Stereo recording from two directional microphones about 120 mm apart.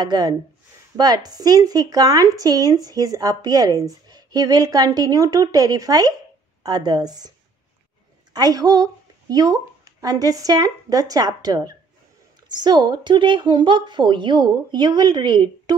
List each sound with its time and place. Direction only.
0.0 s speech: 35° right (ahead or behind)